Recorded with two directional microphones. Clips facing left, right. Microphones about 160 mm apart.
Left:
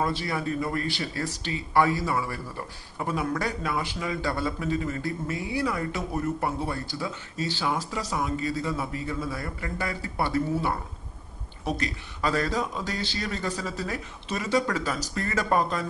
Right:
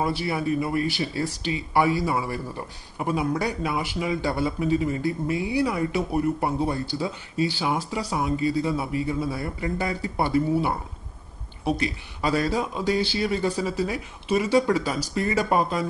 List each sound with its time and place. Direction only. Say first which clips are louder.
0.0 s a man's voice: right 3 dB; 10° right (ahead or behind)